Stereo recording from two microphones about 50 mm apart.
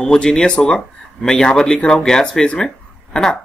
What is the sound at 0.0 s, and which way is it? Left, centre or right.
Speech, centre.